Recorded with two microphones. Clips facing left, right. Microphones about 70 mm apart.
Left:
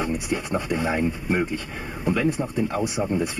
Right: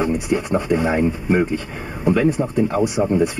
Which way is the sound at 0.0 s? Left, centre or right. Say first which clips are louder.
Right 6 dB; right.